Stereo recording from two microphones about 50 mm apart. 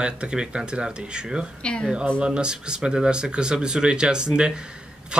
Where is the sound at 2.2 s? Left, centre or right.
Centre.